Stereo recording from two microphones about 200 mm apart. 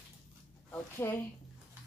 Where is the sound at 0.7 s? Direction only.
10° left (ahead or behind).